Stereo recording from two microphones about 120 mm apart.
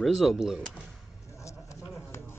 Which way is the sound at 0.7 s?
10° right (ahead or behind).